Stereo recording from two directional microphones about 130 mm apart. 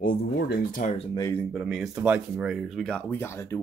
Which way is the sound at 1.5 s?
Centre (ahead or behind).